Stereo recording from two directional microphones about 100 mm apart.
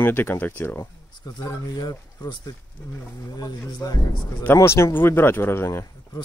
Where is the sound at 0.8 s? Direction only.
40° left (ahead or behind).